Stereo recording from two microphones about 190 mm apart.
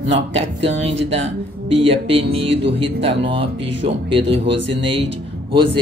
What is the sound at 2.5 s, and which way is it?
Speech, 65° right (ahead or behind).